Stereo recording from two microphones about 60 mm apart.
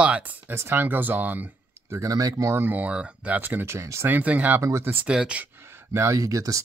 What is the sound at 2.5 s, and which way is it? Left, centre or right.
Speech, right.